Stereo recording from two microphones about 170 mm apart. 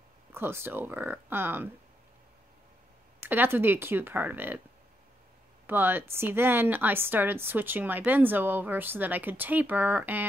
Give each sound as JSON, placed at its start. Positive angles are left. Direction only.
{"t": 0.3, "sound": "speech", "side_deg": -15}
{"t": 3.3, "sound": "speech", "side_deg": -10}
{"t": 5.7, "sound": "speech", "side_deg": -10}